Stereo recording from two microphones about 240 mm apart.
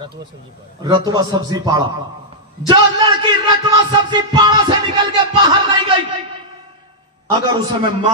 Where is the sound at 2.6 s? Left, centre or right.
Centre.